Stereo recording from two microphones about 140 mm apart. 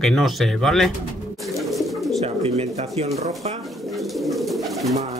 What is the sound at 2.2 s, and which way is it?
Bird, 45° right (ahead or behind).